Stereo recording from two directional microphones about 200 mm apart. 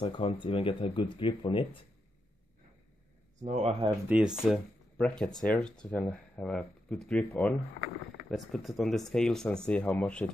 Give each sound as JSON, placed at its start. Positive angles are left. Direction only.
{"t": 0.0, "sound": "speech", "side_deg": 25}
{"t": 3.4, "sound": "speech", "side_deg": -30}
{"t": 4.1, "sound": "speech", "side_deg": -5}